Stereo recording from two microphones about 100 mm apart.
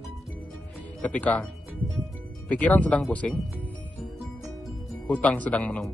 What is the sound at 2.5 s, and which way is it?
Speech, 15° left (ahead or behind).